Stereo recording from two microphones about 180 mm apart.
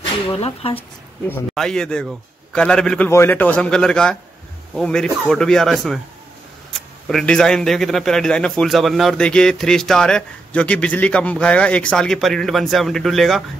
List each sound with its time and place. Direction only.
0.3 s speech: 30° left (ahead or behind)
1.3 s a man's voice: 5° left (ahead or behind)
7.1 s a man's voice: 5° left (ahead or behind)